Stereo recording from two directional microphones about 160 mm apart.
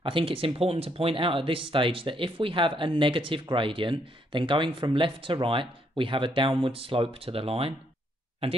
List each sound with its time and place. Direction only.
0.0 s speech: 35° right (ahead or behind)